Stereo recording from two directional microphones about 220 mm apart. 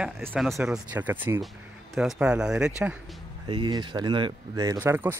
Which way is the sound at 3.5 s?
20° right (ahead or behind).